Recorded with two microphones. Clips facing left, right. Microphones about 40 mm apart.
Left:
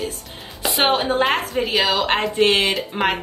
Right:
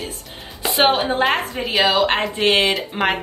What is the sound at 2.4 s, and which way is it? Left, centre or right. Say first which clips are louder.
Speech: even; right.